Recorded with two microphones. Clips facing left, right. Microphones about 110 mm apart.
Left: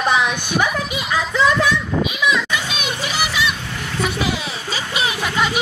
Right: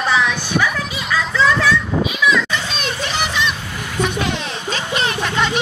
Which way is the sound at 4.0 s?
5° left (ahead or behind).